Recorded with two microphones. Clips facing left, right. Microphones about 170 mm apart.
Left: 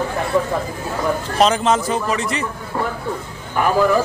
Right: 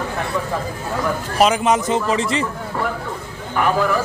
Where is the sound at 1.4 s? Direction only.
10° right (ahead or behind).